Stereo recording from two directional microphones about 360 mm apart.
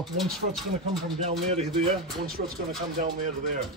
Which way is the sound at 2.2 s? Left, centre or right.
Right.